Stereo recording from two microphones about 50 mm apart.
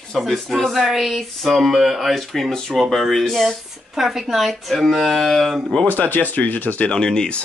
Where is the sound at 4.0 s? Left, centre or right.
Centre.